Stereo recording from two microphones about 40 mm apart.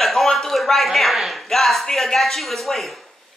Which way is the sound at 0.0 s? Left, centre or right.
Centre.